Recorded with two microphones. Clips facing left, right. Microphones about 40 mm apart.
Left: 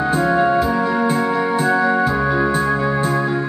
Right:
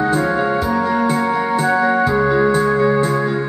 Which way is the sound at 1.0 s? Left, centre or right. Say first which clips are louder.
Right 1 dB; centre.